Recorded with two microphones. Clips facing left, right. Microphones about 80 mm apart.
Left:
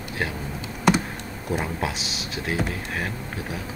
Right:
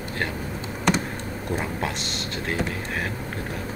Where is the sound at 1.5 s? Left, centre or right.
Centre.